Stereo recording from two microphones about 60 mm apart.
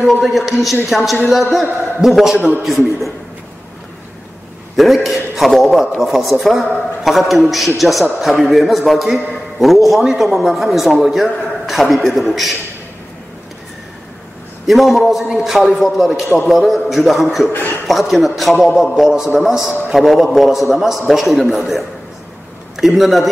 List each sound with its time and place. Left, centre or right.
0.0 s a man's voice: centre
4.7 s a man's voice: centre
14.7 s a man's voice: centre
17.5 s a man's voice: left
17.8 s a man's voice: centre